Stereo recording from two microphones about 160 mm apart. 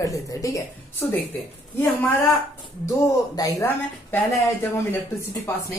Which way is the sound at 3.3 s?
15° left (ahead or behind).